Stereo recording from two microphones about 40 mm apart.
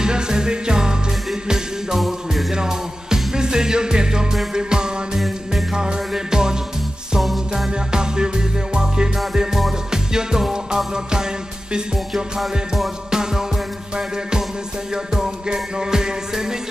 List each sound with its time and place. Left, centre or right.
0.0 s music: centre
2.0 s music: centre
2.5 s music: centre
7.5 s music: centre
12.1 s music: centre
13.1 s music: centre
15.1 s music: centre